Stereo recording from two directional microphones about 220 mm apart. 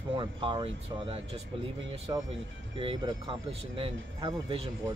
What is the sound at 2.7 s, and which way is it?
Speech, 25° right (ahead or behind).